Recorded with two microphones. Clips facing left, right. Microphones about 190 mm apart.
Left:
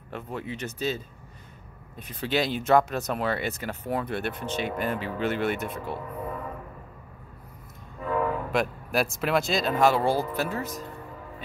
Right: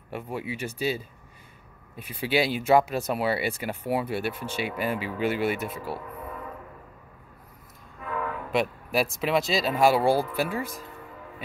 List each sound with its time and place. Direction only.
0.1 s speech: 10° right (ahead or behind)
8.0 s train horn: 35° left (ahead or behind)
8.5 s speech: centre (ahead or behind)